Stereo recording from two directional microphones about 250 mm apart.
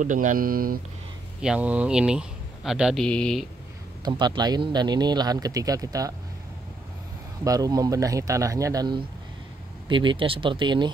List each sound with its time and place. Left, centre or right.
0.0 s speech: right
1.4 s speech: centre
4.0 s speech: centre
7.4 s speech: centre